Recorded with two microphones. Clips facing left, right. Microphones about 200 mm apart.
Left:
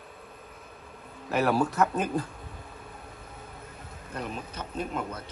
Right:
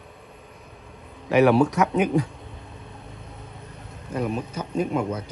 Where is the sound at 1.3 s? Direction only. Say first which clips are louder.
Right 8 dB; 80° right.